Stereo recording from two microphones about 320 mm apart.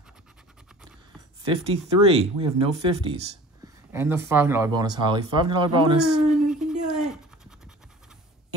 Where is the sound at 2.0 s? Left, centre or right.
Right.